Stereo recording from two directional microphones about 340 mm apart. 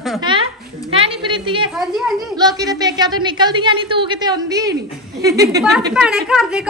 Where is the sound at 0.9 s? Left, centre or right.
Centre.